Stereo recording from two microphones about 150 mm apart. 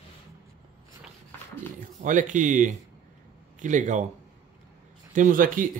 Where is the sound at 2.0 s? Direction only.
60° right (ahead or behind).